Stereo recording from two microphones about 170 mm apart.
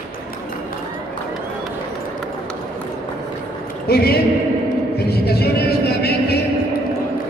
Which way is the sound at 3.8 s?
65° left (ahead or behind).